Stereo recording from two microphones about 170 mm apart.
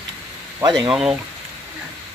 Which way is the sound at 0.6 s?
25° right (ahead or behind).